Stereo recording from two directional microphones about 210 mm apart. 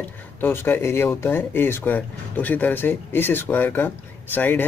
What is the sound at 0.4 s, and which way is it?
Speech, 10° left (ahead or behind).